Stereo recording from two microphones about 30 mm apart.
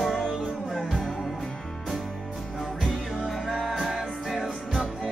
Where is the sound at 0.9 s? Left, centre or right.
Left.